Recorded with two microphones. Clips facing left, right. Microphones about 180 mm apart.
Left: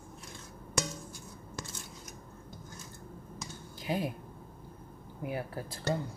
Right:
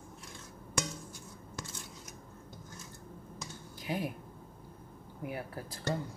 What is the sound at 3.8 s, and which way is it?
Speech, 25° left (ahead or behind).